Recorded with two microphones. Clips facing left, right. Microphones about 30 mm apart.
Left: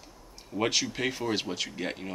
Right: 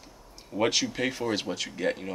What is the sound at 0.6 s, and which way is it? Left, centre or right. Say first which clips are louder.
Speech: right 2 dB; centre.